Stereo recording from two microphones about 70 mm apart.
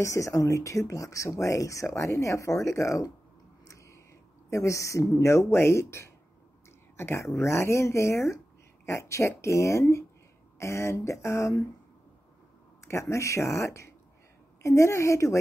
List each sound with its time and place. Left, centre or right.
0.0 s speech: left
3.6 s a sound: left
4.5 s speech: left
12.8 s speech: left